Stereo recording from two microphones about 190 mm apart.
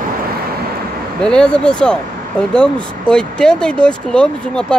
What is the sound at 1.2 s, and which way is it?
Speech, 5° left (ahead or behind).